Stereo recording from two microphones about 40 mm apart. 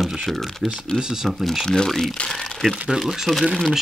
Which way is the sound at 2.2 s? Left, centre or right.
Centre.